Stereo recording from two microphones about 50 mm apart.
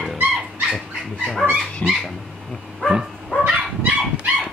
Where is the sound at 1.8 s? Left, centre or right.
Left.